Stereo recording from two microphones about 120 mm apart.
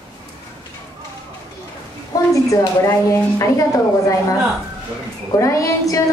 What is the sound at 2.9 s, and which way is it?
Speech, 25° left (ahead or behind).